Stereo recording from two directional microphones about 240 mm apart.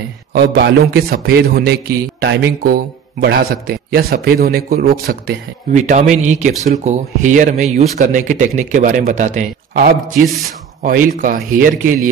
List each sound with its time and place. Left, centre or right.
0.3 s a man's voice: right